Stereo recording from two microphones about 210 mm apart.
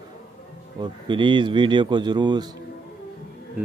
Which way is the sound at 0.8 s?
20° right (ahead or behind).